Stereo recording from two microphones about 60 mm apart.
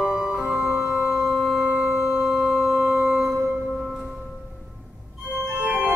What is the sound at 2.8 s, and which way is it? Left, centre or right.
Music, right.